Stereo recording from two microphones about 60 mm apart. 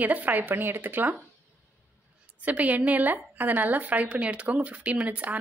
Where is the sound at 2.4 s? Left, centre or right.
Right.